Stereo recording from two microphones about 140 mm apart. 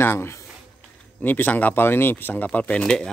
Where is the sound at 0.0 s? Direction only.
15° left (ahead or behind).